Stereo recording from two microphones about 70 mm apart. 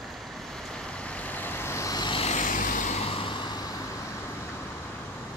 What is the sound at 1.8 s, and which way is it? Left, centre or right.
Vehicle, left.